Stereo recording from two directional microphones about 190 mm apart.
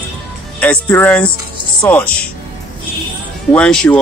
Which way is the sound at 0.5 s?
10° left (ahead or behind).